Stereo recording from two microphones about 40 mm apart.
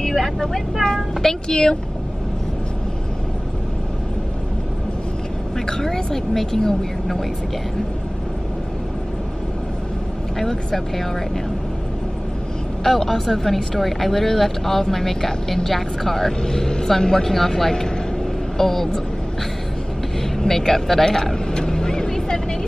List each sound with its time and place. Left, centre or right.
0.0 s speech: centre
1.2 s speech: centre
5.7 s speech: centre
10.4 s speech: centre
12.8 s speech: centre
20.3 s vehicle: centre